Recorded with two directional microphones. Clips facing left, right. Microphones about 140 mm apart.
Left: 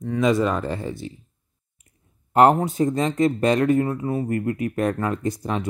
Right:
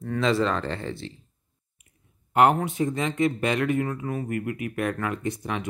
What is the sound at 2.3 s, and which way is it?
Speech, 35° left (ahead or behind).